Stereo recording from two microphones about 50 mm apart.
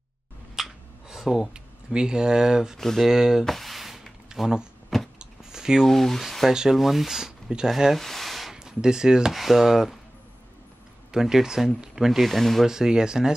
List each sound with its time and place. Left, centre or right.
0.6 s a sound: centre
1.5 s speech: centre
2.8 s speech: centre
3.1 s speech: centre
3.4 s a sound: centre
4.3 s speech: centre
5.2 s a sound: centre
5.9 s speech: centre
6.5 s speech: centre
8.5 s speech: centre
11.1 s speech: centre
12.6 s speech: centre